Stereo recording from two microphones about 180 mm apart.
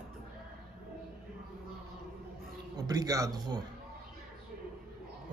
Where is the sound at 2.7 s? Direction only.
20° right (ahead or behind).